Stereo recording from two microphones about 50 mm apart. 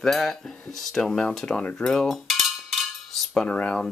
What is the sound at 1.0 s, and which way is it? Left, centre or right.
Speech, centre.